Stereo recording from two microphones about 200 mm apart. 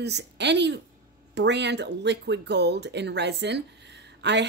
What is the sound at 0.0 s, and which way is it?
Speech, 60° right (ahead or behind).